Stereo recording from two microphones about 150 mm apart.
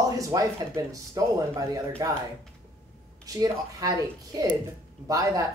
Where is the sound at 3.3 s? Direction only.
25° right (ahead or behind).